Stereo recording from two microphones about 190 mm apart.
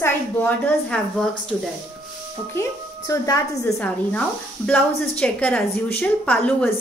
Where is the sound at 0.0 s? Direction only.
10° left (ahead or behind).